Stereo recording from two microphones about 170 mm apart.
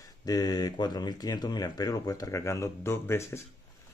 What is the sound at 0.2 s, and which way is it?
Speech, 20° left (ahead or behind).